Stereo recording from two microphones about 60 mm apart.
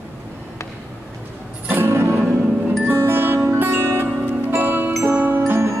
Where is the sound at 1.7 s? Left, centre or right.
Right.